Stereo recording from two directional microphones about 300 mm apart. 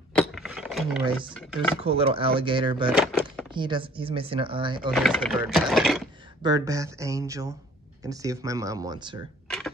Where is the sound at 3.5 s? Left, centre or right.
Centre.